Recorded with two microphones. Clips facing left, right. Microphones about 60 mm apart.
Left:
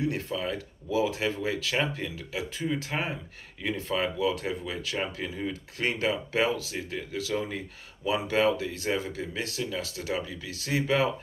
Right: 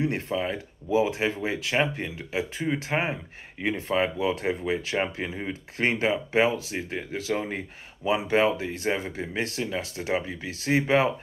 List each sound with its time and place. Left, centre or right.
0.0 s speech: right